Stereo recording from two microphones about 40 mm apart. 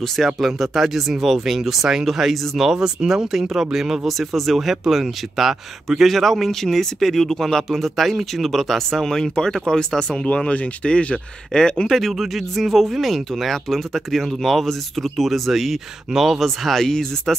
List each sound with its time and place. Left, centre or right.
0.0 s speech: centre
2.8 s speech: centre
3.3 s speech: centre; by 10.2 s left
10.2 s speech: left
11.5 s speech: centre
11.9 s speech: centre
16.8 s speech: centre